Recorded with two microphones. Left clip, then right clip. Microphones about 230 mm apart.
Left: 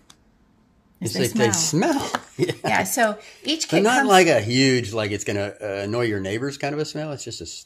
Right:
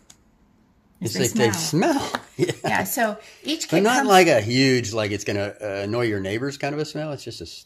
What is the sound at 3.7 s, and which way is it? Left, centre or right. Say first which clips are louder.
Speech: even; centre.